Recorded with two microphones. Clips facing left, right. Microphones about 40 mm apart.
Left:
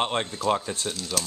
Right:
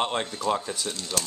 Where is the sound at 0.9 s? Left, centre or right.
Centre.